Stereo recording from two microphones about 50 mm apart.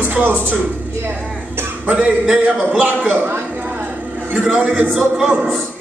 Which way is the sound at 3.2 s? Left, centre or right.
Right.